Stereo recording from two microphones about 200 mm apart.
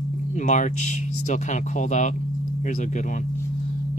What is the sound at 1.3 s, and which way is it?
Speech, 35° left (ahead or behind).